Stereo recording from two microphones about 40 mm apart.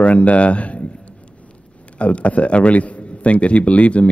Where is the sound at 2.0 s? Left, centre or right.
Left.